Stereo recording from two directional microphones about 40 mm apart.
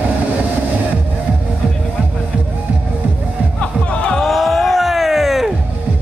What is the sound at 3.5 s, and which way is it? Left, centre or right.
Music, left.